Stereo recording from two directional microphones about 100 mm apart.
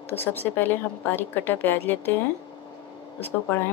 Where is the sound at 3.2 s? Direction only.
20° left (ahead or behind).